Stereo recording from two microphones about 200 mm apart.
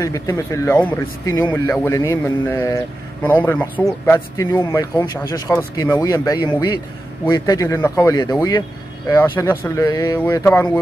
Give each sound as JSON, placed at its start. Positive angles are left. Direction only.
{"t": 0.0, "sound": "speech", "side_deg": 15}